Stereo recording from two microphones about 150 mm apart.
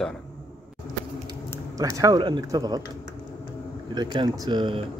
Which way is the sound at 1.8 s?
20° right (ahead or behind).